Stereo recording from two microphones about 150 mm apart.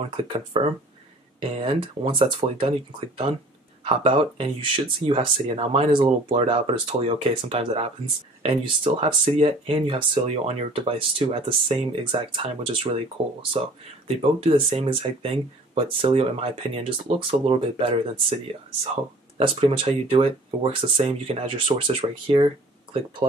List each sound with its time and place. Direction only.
0.2 s speech: 35° right (ahead or behind)